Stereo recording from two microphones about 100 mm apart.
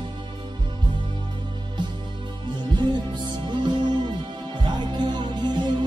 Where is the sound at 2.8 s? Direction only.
50° right (ahead or behind).